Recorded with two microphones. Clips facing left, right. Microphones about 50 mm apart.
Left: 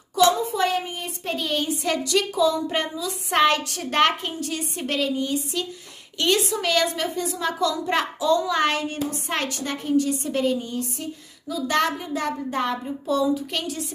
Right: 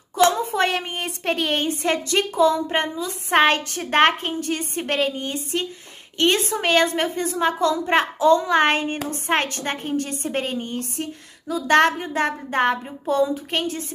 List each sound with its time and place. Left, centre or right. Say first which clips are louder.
0.1 s a woman's voice: right 1 dB; right